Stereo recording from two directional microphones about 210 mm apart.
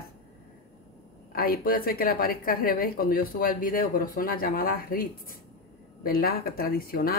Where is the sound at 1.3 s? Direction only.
45° left (ahead or behind).